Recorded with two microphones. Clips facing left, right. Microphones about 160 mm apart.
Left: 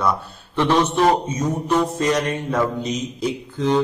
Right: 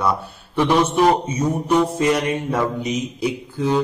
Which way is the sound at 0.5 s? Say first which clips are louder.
Right 1 dB; 10° right (ahead or behind).